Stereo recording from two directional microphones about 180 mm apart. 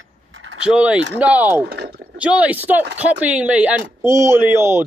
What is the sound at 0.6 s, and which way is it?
Speech, 5° right (ahead or behind).